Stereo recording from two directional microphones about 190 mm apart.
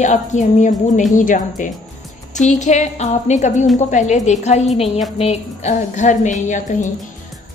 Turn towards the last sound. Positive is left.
turn(degrees=40)  # may be behind; listen again after turning